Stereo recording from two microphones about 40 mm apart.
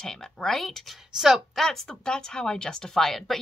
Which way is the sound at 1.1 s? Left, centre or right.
Centre.